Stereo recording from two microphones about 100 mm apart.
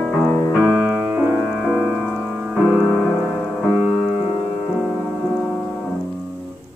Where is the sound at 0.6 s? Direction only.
10° right (ahead or behind).